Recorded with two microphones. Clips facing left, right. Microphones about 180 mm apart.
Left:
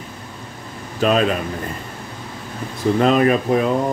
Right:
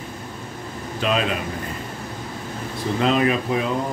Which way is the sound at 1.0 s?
45° left (ahead or behind).